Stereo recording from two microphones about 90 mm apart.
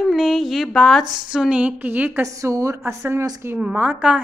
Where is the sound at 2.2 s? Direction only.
35° right (ahead or behind).